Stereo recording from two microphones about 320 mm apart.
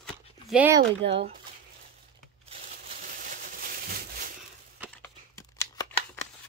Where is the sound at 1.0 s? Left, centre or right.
Right.